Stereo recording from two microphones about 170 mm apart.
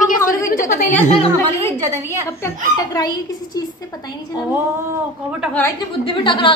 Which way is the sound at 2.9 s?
25° left (ahead or behind).